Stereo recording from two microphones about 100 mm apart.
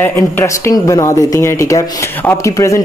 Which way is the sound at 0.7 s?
35° left (ahead or behind).